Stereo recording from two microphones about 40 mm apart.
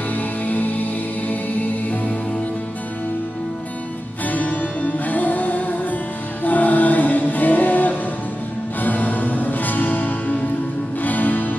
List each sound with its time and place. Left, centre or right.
0.1 s music: left
4.3 s music: left